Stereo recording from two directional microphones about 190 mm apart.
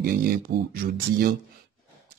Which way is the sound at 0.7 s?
55° right (ahead or behind).